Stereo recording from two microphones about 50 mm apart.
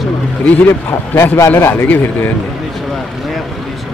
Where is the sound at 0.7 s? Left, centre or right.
Left.